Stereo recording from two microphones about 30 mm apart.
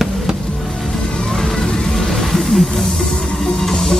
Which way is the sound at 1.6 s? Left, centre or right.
Left.